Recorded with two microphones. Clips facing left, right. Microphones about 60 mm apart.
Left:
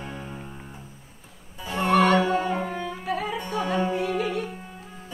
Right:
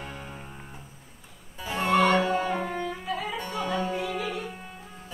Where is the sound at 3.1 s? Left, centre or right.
Left.